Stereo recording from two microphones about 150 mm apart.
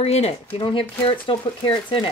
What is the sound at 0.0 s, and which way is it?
Speech, 45° left (ahead or behind).